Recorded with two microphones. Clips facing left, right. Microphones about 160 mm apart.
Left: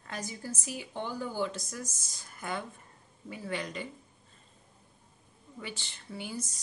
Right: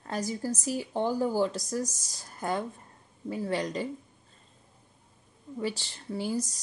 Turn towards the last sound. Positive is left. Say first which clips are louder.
# right 8 dB
turn(degrees=-40)  # may be behind; listen again after turning